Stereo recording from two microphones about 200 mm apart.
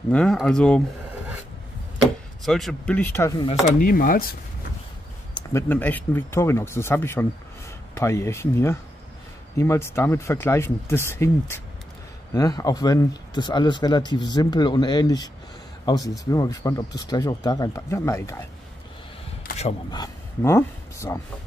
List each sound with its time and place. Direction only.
0.1 s speech: 5° left (ahead or behind)
2.4 s speech: centre (ahead or behind)
3.4 s speech: 40° left (ahead or behind)
5.5 s speech: 10° left (ahead or behind)
19.9 s speech: 15° left (ahead or behind)